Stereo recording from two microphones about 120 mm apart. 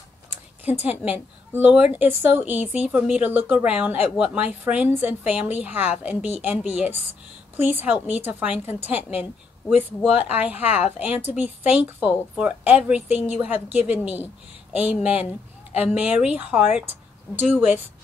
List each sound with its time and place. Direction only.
0.7 s a woman's voice: 15° right (ahead or behind)